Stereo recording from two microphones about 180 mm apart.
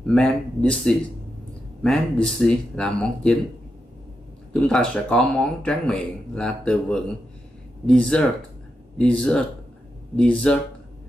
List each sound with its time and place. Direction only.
0.0 s speech: 5° left (ahead or behind)
4.6 s speech: 5° left (ahead or behind)